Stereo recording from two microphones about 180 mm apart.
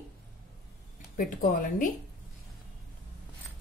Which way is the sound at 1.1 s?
50° left (ahead or behind).